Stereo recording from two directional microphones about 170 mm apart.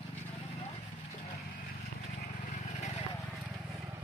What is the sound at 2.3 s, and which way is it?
Vehicle, 45° left (ahead or behind).